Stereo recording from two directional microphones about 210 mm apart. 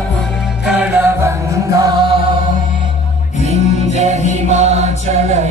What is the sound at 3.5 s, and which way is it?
Music, 30° right (ahead or behind).